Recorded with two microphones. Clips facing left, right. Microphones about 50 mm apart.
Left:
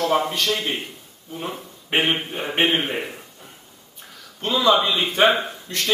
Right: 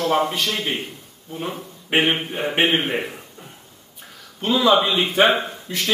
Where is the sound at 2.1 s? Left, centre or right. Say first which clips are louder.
Right 2 dB; centre.